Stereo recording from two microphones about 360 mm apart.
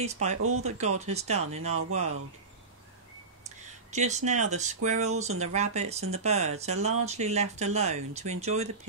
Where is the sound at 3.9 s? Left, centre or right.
Centre.